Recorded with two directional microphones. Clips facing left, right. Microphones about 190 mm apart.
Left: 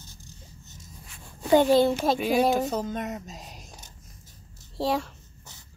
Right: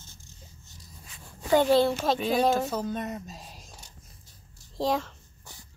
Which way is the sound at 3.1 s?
20° left (ahead or behind).